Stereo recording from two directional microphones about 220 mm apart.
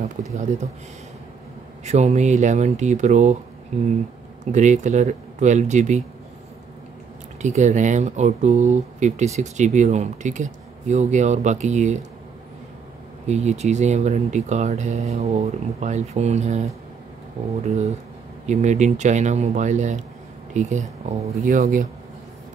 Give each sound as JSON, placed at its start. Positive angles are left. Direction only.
{"t": 0.3, "sound": "speech", "side_deg": -30}
{"t": 1.9, "sound": "speech", "side_deg": -30}
{"t": 7.4, "sound": "speech", "side_deg": -35}
{"t": 13.3, "sound": "speech", "side_deg": -30}